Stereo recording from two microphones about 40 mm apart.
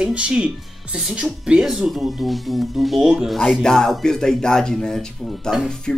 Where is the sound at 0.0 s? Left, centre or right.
Right.